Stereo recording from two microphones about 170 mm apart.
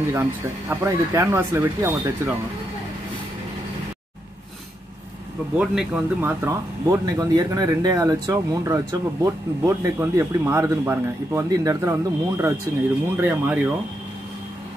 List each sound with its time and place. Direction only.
0.1 s speech: 10° right (ahead or behind)
5.6 s speech: 5° right (ahead or behind)
6.4 s speech: 15° right (ahead or behind)